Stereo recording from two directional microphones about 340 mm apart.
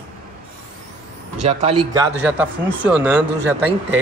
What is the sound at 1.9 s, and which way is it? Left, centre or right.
Speech, centre.